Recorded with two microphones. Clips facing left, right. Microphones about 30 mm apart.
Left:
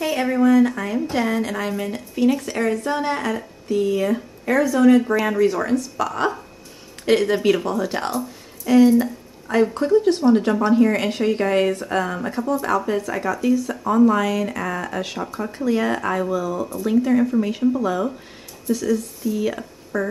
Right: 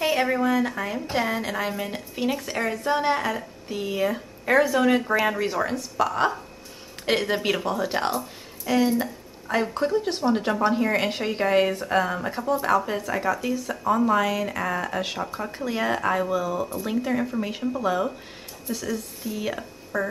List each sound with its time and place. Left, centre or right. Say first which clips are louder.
0.0 s a woman's voice: left 3 dB; centre
4.5 s speech: left 4 dB; right
5.0 s a woman's voice: left 4 dB; centre